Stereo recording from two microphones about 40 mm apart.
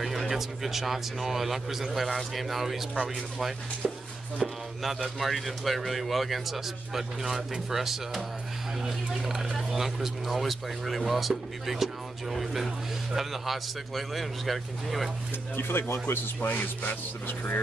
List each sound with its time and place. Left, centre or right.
0.0 s speech: centre
3.8 s speech: centre
4.8 s speech: centre
15.5 s speech: left
16.3 s speech: left